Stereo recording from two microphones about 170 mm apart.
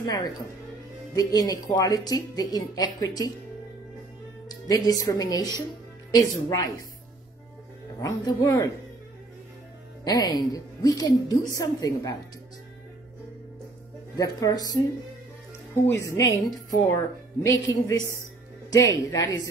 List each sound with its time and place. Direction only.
0.0 s a woman's voice: 20° left (ahead or behind)
4.5 s a woman's voice: 20° left (ahead or behind)
8.0 s a woman's voice: 20° left (ahead or behind)
10.0 s a woman's voice: 25° left (ahead or behind)
14.1 s a woman's voice: 20° left (ahead or behind)